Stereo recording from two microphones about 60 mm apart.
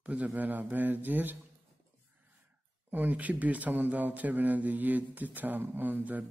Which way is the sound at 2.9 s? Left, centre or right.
Right.